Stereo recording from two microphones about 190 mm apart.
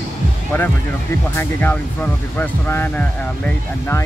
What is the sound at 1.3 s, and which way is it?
Speech, 10° left (ahead or behind).